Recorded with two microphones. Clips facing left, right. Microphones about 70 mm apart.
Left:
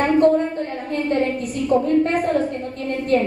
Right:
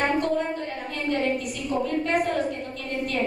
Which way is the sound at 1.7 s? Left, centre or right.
Left.